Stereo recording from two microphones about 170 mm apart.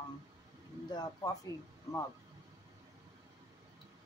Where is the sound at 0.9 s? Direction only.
20° left (ahead or behind).